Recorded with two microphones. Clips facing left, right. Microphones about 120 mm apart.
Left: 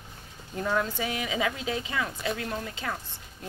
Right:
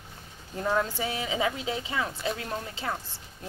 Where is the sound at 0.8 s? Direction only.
30° right (ahead or behind).